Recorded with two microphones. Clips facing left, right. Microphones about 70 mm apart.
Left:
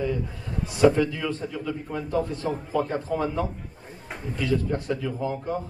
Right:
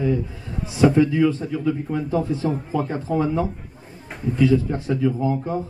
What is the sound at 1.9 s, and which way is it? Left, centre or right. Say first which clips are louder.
Speech: right 4 dB; centre.